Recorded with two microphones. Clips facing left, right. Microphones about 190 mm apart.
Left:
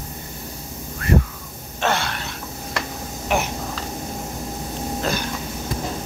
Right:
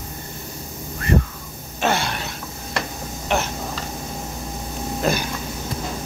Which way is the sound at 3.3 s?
5° left (ahead or behind).